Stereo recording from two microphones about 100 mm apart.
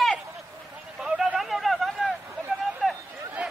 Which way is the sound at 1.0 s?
5° right (ahead or behind).